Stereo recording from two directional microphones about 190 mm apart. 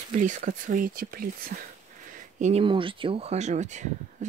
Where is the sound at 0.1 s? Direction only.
40° right (ahead or behind).